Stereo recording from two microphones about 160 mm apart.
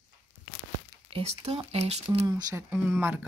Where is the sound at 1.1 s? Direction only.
40° right (ahead or behind).